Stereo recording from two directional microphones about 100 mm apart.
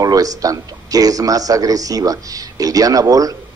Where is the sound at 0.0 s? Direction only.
35° right (ahead or behind).